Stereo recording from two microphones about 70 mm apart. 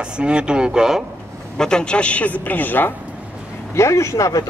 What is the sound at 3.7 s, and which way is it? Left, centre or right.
Speech, left.